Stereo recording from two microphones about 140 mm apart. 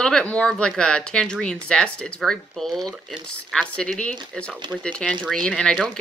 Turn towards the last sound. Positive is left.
turn(degrees=5)  # may be behind; listen again after turning